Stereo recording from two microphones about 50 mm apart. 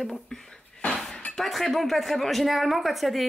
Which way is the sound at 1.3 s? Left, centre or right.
Centre.